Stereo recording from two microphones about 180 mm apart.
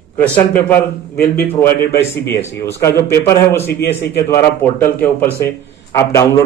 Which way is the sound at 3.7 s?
65° left (ahead or behind).